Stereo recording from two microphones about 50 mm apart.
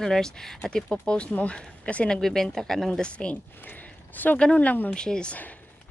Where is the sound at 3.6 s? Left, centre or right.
Left.